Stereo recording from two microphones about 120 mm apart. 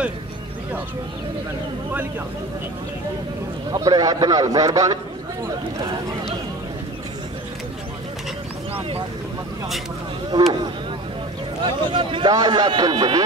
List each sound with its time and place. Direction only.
3.7 s speech: 30° right (ahead or behind)
10.3 s a man's voice: 35° right (ahead or behind)
11.6 s a man's voice: 45° right (ahead or behind)